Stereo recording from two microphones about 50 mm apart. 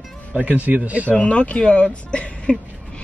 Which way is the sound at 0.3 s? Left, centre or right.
Right.